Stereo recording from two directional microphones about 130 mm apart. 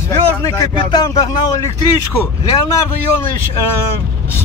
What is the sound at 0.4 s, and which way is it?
Speech, 25° left (ahead or behind).